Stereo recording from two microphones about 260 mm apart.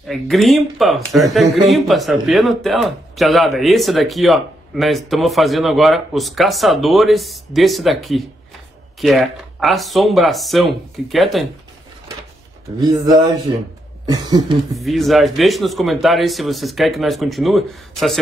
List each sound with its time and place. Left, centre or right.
0.0 s speech: centre
12.8 s a sound: centre
14.8 s speech: centre